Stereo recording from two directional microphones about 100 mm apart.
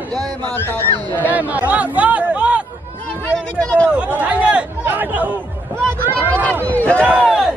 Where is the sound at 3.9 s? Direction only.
15° right (ahead or behind).